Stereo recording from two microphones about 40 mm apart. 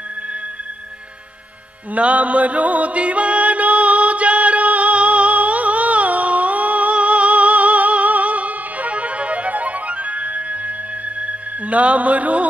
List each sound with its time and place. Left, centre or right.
2.0 s music: right